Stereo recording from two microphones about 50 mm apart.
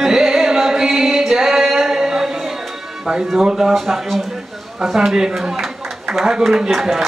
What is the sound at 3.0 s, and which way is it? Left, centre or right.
Speech, centre.